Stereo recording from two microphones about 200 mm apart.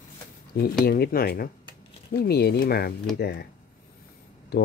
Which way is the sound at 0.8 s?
50° left (ahead or behind).